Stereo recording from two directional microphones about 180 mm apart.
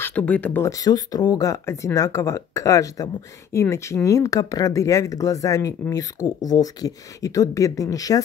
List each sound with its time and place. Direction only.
0.0 s speech: 10° left (ahead or behind)